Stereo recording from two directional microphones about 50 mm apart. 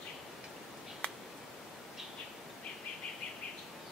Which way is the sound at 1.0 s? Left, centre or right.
Left.